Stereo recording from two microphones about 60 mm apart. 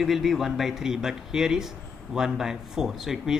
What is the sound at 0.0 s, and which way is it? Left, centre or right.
A man's voice, centre.